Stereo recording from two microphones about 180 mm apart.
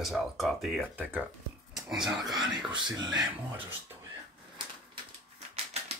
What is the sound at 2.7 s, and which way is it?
Speech, 25° right (ahead or behind).